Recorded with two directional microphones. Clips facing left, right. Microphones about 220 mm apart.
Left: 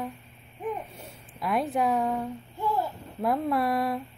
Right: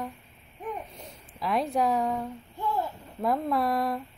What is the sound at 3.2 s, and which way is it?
Speech, centre (ahead or behind).